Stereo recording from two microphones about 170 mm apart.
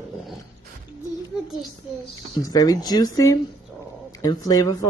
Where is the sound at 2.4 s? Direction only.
20° left (ahead or behind).